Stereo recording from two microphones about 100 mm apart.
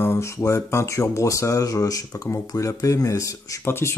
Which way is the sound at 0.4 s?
30° left (ahead or behind).